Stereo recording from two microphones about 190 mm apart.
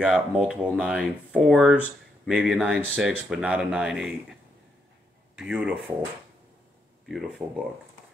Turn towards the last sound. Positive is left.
turn(degrees=0)  # may be behind; listen again after turning